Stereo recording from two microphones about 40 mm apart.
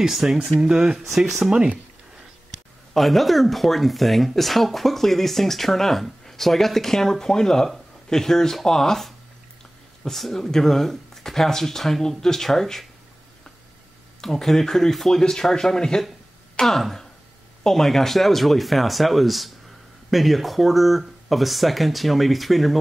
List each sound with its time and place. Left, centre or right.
0.1 s speech: centre
0.6 s speech: right
2.9 s speech: centre
14.2 s speech: centre